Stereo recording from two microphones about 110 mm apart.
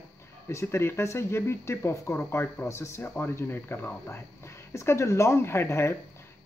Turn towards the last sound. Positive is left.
turn(degrees=20)  # may be behind; listen again after turning